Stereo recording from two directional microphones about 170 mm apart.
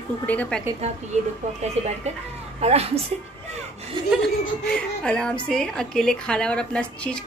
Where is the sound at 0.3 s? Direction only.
10° left (ahead or behind).